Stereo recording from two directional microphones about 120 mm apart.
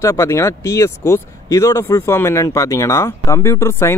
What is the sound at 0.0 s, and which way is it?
Speech, 25° left (ahead or behind).